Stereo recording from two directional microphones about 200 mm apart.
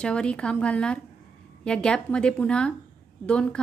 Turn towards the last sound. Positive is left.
turn(degrees=5)  # may be behind; listen again after turning